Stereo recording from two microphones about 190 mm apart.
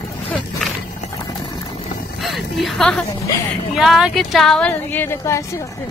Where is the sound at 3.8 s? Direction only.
Centre (ahead or behind); by 5.6 s 15° left (ahead or behind).